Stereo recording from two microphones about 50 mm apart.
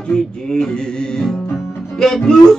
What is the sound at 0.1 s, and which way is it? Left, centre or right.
Music, centre.